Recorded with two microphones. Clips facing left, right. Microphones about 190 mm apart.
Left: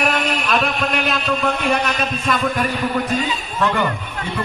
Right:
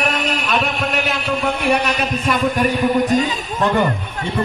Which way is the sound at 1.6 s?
10° right (ahead or behind).